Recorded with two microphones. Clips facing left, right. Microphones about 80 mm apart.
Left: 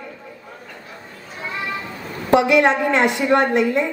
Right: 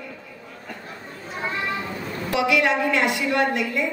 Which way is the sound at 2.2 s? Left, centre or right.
Left.